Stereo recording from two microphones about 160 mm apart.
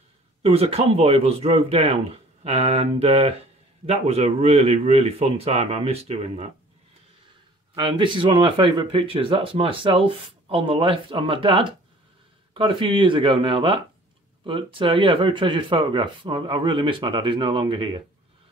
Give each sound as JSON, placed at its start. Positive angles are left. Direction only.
{"t": 0.4, "sound": "speech", "side_deg": -40}
{"t": 7.7, "sound": "speech", "side_deg": -30}